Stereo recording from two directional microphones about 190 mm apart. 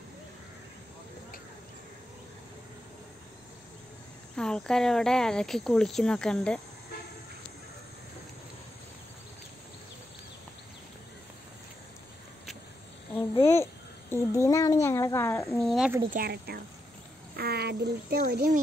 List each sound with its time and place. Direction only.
4.4 s speech: 5° left (ahead or behind)
13.3 s a child's voice: 15° left (ahead or behind)
15.6 s speech: centre (ahead or behind)
16.1 s a woman's voice: 55° right (ahead or behind)